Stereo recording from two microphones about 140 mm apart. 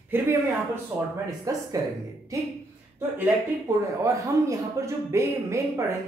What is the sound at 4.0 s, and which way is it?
Speech, 20° right (ahead or behind).